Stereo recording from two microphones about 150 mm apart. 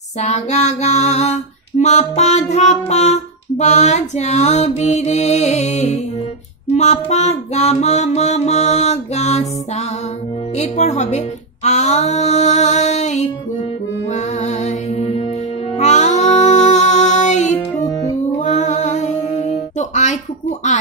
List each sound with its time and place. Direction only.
0.2 s female singing: 45° left (ahead or behind)
10.6 s female singing: 50° left (ahead or behind)
14.1 s music: 50° left (ahead or behind)